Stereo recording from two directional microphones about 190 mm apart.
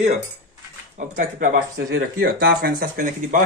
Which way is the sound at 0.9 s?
45° right (ahead or behind).